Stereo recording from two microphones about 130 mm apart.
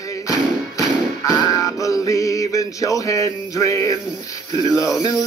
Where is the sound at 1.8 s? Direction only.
25° left (ahead or behind).